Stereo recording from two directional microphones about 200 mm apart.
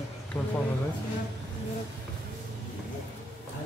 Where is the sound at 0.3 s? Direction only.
10° left (ahead or behind).